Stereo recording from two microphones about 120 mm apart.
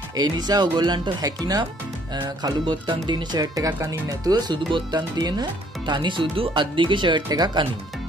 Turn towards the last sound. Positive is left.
turn(degrees=-35)  # may be behind; listen again after turning